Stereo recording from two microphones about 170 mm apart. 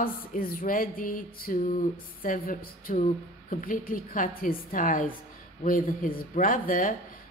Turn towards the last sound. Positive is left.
turn(degrees=55)  # may be behind; listen again after turning